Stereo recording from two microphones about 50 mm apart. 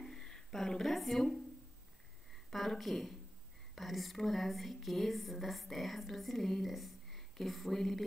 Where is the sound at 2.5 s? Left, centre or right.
Centre.